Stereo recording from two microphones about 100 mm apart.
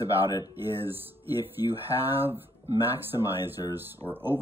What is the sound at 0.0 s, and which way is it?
Speech, 40° left (ahead or behind).